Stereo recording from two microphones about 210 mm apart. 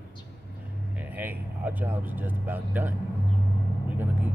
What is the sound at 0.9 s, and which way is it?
Speech, 10° right (ahead or behind).